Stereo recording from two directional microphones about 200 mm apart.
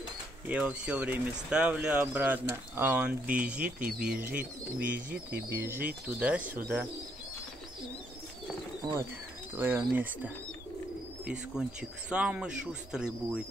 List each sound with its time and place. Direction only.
0.5 s speech: 5° right (ahead or behind)
8.8 s speech: 20° right (ahead or behind)
9.6 s speech: 10° right (ahead or behind)
12.1 s speech: 5° right (ahead or behind)